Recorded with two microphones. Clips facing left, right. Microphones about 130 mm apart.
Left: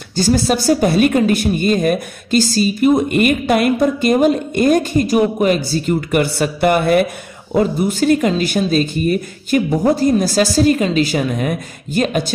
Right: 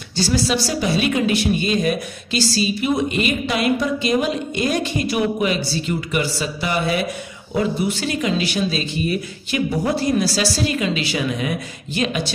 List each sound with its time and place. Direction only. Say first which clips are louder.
0.1 s a woman's voice: left 5 dB; 50° left (ahead or behind)